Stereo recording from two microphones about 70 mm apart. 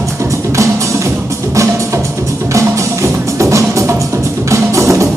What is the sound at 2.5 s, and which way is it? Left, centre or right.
Music, right.